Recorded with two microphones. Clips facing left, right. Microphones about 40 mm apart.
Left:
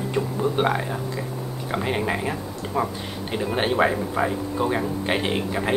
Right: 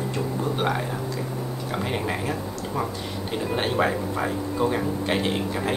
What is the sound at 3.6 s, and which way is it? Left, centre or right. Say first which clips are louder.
Speech: left 3 dB; centre.